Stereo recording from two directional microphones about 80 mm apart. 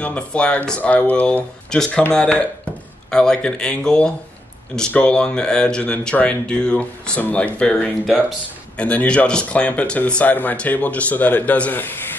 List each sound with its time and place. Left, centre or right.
0.0 s speech: centre